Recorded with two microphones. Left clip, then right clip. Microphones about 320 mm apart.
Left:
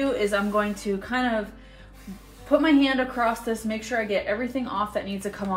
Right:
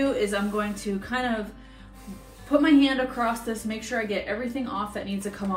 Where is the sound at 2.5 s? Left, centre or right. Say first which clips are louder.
Even; centre.